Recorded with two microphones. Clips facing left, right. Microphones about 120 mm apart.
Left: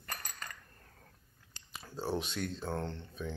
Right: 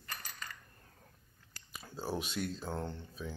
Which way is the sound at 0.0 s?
50° left (ahead or behind).